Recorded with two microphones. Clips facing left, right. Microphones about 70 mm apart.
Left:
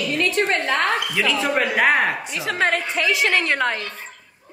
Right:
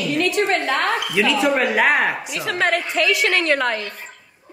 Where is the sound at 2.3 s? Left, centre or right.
Centre.